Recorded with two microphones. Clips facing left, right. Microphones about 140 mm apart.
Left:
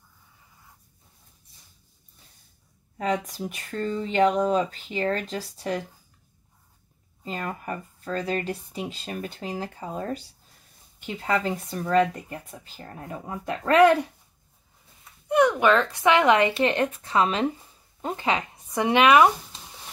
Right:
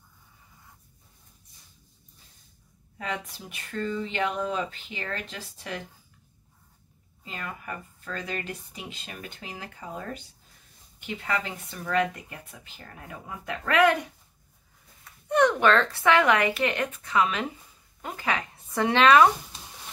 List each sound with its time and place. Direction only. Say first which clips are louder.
3.0 s speech: left 8 dB; 40° left (ahead or behind)
7.2 s speech: left 6 dB; 40° left (ahead or behind)
15.2 s speech: left 2 dB; 10° left (ahead or behind)